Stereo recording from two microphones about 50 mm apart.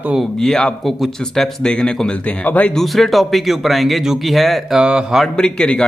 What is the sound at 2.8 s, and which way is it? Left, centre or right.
Speech, centre.